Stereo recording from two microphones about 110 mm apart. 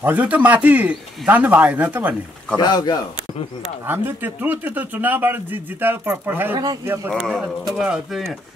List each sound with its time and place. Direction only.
0.0 s speech: 15° right (ahead or behind)
2.5 s speech: 40° left (ahead or behind)
3.8 s speech: 20° right (ahead or behind)
7.1 s speech: centre (ahead or behind)